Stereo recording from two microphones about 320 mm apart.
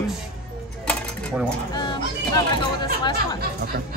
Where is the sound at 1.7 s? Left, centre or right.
Centre.